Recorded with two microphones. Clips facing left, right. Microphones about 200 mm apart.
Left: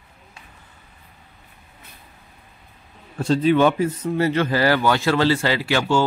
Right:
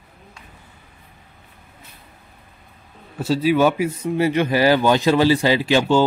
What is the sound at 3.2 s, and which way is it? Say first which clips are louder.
A man's voice: even; 5° right (ahead or behind).